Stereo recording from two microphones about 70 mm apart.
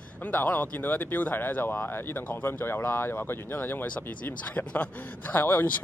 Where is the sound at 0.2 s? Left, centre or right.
Left.